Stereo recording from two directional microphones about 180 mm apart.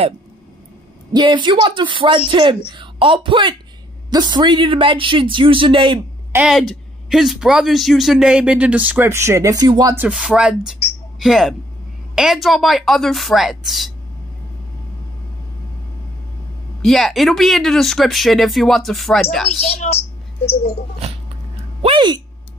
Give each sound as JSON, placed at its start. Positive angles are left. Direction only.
{"t": 1.1, "sound": "speech", "side_deg": -25}
{"t": 6.3, "sound": "speech", "side_deg": -5}
{"t": 10.0, "sound": "a man's voice", "side_deg": -5}
{"t": 16.8, "sound": "speech", "side_deg": 0}
{"t": 19.7, "sound": "a woman's voice", "side_deg": 35}
{"t": 21.8, "sound": "speech", "side_deg": -25}